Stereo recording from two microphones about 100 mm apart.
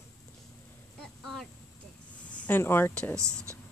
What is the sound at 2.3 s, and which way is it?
Speech, 15° left (ahead or behind).